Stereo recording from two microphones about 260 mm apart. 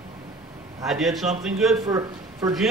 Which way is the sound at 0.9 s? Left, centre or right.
Centre.